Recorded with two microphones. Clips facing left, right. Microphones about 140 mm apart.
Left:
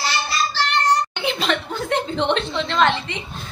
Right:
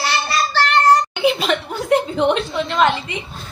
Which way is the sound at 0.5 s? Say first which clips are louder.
Right 7 dB; 50° right (ahead or behind).